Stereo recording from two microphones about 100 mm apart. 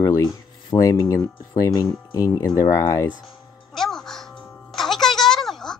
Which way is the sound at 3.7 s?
Centre (ahead or behind).